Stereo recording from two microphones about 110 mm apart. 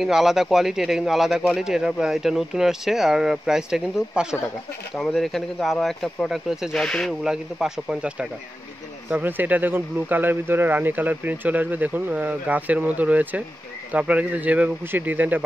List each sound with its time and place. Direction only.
0.0 s speech: 5° right (ahead or behind)
7.2 s speech: 5° right (ahead or behind)